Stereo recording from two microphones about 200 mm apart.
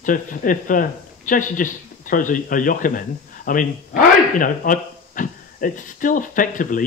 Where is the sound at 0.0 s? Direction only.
40° left (ahead or behind).